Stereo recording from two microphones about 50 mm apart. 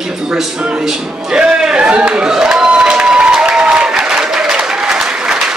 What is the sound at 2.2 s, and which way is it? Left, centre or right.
Applause, centre.